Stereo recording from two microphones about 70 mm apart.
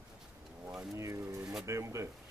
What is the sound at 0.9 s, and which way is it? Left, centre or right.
Speech, right.